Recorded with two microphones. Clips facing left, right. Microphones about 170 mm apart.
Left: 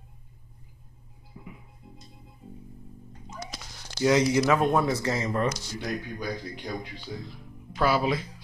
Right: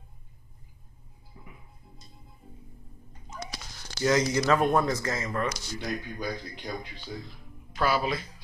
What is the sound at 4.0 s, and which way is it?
Speech, 15° left (ahead or behind).